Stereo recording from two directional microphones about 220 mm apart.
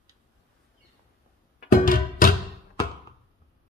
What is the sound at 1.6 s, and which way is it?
Music, 40° left (ahead or behind).